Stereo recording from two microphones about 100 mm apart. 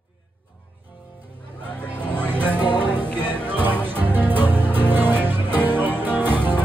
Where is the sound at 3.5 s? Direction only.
20° right (ahead or behind).